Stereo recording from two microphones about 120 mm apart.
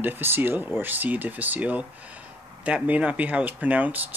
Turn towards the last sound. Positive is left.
turn(degrees=-15)  # may be behind; listen again after turning